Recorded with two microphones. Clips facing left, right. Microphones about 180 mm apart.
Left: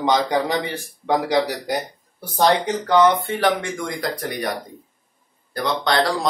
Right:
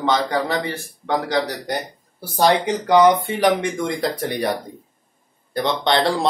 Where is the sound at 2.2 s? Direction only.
10° right (ahead or behind); by 4.4 s 25° right (ahead or behind).